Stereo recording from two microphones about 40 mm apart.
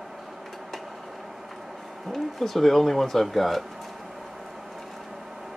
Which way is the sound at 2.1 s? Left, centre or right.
Centre.